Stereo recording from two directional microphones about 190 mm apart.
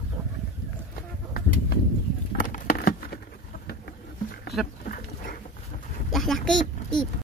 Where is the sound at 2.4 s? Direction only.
45° left (ahead or behind).